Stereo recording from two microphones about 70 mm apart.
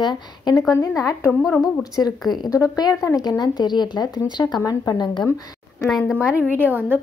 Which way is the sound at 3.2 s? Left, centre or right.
Left.